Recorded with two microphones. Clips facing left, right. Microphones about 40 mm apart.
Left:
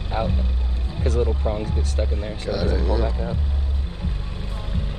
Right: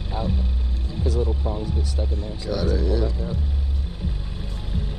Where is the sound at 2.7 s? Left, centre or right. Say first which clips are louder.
Even; centre.